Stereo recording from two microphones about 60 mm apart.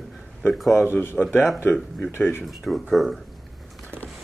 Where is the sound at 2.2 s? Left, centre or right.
Centre.